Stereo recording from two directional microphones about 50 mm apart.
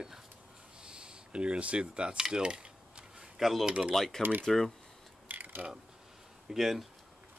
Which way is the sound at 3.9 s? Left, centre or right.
Centre.